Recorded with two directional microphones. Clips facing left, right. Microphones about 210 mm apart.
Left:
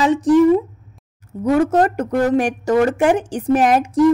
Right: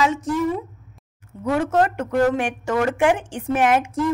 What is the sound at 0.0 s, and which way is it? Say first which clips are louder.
Speech: left 8 dB; 35° left (ahead or behind).